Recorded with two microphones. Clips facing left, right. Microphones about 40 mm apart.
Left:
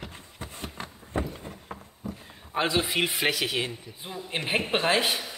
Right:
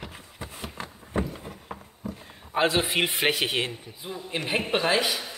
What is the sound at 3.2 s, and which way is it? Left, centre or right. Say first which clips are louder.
Speech: right 2 dB; right.